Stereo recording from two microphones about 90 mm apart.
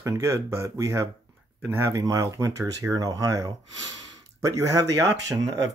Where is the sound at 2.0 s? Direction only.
40° right (ahead or behind).